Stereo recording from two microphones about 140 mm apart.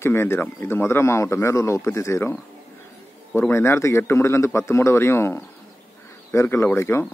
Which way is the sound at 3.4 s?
20° left (ahead or behind).